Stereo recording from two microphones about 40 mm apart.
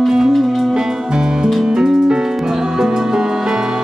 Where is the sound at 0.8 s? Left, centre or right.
Centre.